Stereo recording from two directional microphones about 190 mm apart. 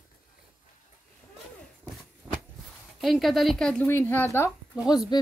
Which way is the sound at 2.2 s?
20° right (ahead or behind).